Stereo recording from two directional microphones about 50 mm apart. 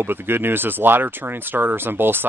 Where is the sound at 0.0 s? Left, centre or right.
Right.